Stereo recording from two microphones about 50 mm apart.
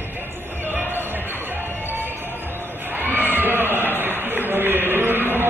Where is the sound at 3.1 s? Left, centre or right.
Right.